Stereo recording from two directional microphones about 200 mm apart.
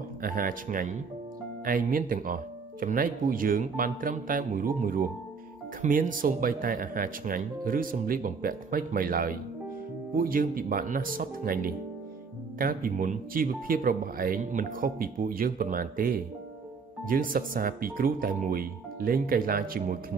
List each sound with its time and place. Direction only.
0.2 s speech: 45° right (ahead or behind)